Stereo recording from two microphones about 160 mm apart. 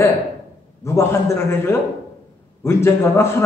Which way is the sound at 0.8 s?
15° left (ahead or behind).